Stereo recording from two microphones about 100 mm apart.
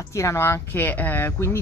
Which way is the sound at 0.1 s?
30° left (ahead or behind).